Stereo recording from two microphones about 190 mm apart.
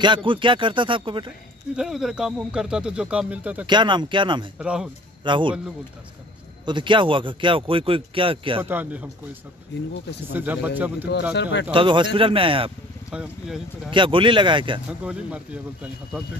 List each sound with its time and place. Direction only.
0.0 s a man's voice: 25° right (ahead or behind)
1.8 s speech: 5° right (ahead or behind)
3.6 s a man's voice: 25° right (ahead or behind)
4.6 s speech: 5° right (ahead or behind)
5.2 s a man's voice: 25° right (ahead or behind)
6.6 s a man's voice: 25° right (ahead or behind)
8.6 s speech: 10° right (ahead or behind)
10.3 s speech: 10° right (ahead or behind)
11.7 s a man's voice: 25° right (ahead or behind)
13.1 s speech: 5° right (ahead or behind)
13.8 s a man's voice: 25° right (ahead or behind)
15.0 s speech: 5° right (ahead or behind)